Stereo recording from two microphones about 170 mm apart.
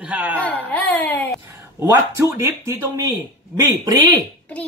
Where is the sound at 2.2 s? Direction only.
15° right (ahead or behind).